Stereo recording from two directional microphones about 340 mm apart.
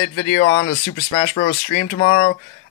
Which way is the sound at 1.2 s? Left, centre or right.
Left.